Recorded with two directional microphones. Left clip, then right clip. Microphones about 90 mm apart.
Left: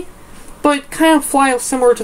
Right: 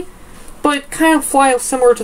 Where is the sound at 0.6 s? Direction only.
50° left (ahead or behind).